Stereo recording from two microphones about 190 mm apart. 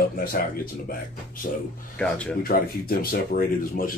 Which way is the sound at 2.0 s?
5° left (ahead or behind).